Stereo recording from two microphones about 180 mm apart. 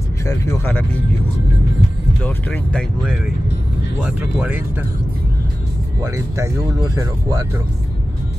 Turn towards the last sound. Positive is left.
turn(degrees=-15)  # may be behind; listen again after turning